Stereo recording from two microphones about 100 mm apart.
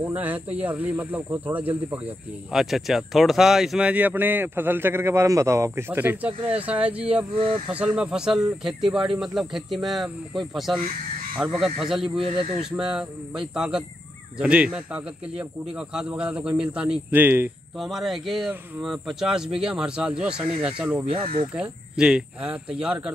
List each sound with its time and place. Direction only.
0.0 s a man's voice: 15° right (ahead or behind)
2.5 s a man's voice: centre (ahead or behind); by 17.5 s 20° right (ahead or behind)
17.7 s a man's voice: centre (ahead or behind)
21.0 s speech: 75° right (ahead or behind)
21.5 s a man's voice: 10° right (ahead or behind)